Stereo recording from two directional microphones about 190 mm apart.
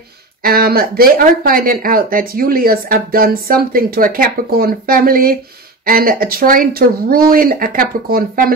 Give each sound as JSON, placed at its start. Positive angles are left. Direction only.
{"t": 0.4, "sound": "speech", "side_deg": -50}